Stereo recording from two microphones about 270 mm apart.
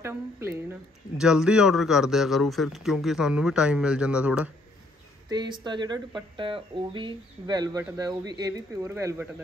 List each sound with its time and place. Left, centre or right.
0.0 s a woman's voice: centre
5.3 s speech: centre